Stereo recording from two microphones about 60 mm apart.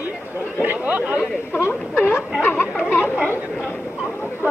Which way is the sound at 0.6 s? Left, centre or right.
Right.